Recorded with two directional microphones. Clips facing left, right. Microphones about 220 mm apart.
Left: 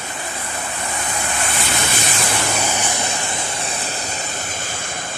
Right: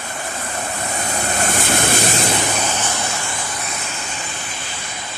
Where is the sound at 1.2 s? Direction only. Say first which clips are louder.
Right 5 dB; 40° right (ahead or behind).